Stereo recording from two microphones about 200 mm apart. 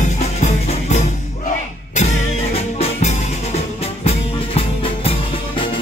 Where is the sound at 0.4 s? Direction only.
35° left (ahead or behind).